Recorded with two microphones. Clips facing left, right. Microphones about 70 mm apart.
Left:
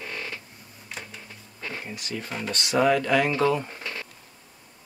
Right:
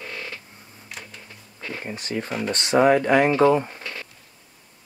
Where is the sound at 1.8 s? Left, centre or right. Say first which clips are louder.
Right 5 dB; right.